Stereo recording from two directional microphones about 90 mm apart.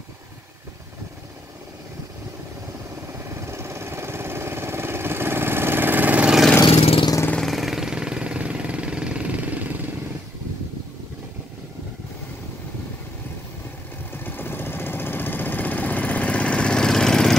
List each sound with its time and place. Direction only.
3.1 s vehicle: 30° right (ahead or behind)
6.7 s vehicle: 90° left
7.3 s vehicle: centre (ahead or behind); by 9.8 s 15° right (ahead or behind)
14.1 s vehicle: 25° left (ahead or behind); by 17.4 s 5° left (ahead or behind)